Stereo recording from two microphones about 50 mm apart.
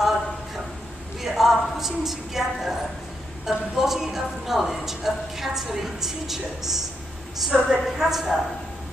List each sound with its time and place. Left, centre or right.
1.2 s a woman's voice: centre